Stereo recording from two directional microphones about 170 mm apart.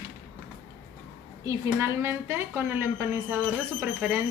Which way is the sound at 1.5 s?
15° right (ahead or behind).